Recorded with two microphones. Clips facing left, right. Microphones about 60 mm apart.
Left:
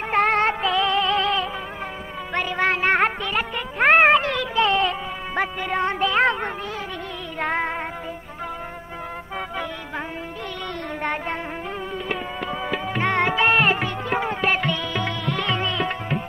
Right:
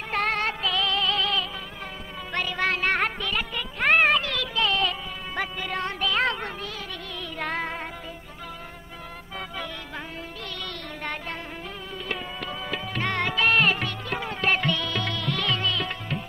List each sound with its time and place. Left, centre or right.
0.4 s music: left
2.3 s music: centre
3.8 s a sound: left
4.4 s music: left
11.0 s music: left
14.4 s music: centre